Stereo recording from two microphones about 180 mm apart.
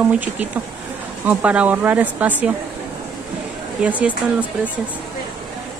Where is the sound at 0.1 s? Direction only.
10° right (ahead or behind).